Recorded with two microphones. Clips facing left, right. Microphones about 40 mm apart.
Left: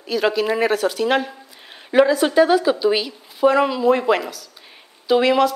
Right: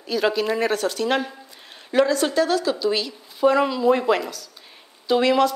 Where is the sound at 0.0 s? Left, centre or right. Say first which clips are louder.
Left 2 dB; centre.